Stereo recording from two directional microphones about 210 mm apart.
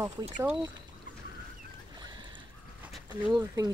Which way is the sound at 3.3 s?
15° right (ahead or behind).